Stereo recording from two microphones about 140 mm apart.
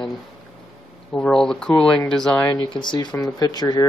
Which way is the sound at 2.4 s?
30° left (ahead or behind).